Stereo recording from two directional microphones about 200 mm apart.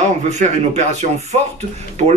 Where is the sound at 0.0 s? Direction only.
35° right (ahead or behind).